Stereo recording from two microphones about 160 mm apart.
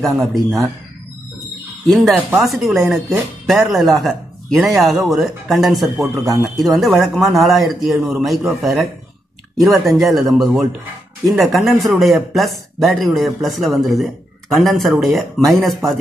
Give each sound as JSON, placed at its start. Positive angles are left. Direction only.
{"t": 0.0, "sound": "speech", "side_deg": 0}
{"t": 1.9, "sound": "a man's voice", "side_deg": 0}
{"t": 6.2, "sound": "speech", "side_deg": -20}
{"t": 6.5, "sound": "speech", "side_deg": 0}